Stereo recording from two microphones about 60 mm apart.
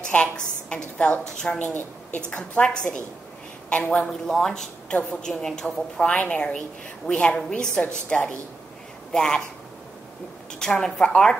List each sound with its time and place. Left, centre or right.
0.0 s a woman's voice: centre
1.7 s a woman's voice: left
2.2 s speech: centre
5.9 s a woman's voice: left
10.6 s speech: centre